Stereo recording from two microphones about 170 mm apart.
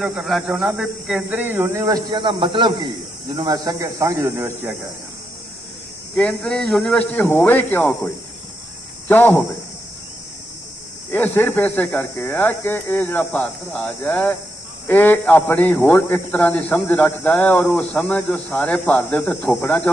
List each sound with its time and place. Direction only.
0.0 s speech: 5° right (ahead or behind)
6.1 s a man's voice: 5° left (ahead or behind)
11.1 s a man's voice: 10° left (ahead or behind)